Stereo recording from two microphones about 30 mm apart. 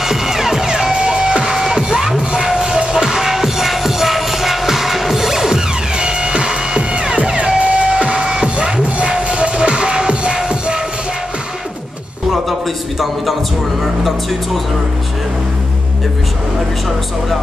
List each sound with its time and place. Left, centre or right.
0.0 s music: centre
0.7 s music: right
2.6 s music: right
2.9 s music: centre
5.9 s music: right
13.0 s a man's voice: centre